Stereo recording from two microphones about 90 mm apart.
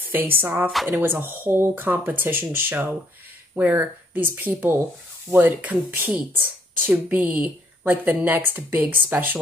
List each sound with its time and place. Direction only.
0.1 s speech: 25° right (ahead or behind)
0.7 s speech: centre (ahead or behind)
0.9 s speech: 25° right (ahead or behind)